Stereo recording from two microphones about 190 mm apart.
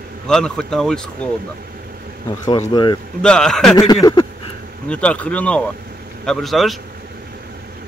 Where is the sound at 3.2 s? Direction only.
5° left (ahead or behind).